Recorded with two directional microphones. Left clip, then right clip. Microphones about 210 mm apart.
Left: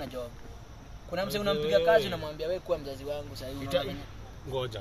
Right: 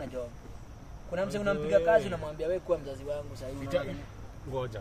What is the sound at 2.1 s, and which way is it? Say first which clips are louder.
Speech: right 1 dB; 15° right (ahead or behind).